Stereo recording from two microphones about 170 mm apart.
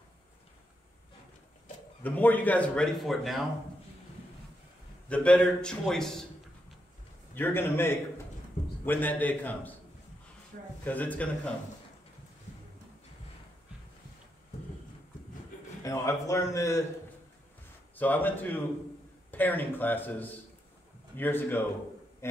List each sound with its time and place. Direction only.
2.0 s a man's voice: 10° left (ahead or behind)
5.1 s a man's voice: 5° left (ahead or behind)
7.3 s a man's voice: 10° left (ahead or behind)
10.5 s speech: 60° right (ahead or behind)
10.9 s a man's voice: 10° left (ahead or behind)
15.8 s speech: 20° left (ahead or behind)
17.9 s a man's voice: 10° left (ahead or behind)
22.2 s a sound: 15° left (ahead or behind)